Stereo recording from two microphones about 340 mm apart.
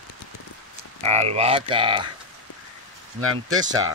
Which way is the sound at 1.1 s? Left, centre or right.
Centre.